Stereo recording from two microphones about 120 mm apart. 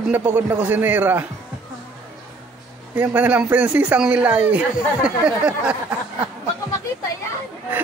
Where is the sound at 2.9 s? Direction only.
15° right (ahead or behind).